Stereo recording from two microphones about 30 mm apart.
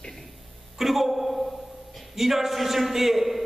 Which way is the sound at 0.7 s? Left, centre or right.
Centre.